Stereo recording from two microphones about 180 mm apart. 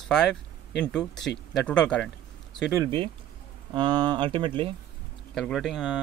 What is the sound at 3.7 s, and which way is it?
Speech, 25° right (ahead or behind).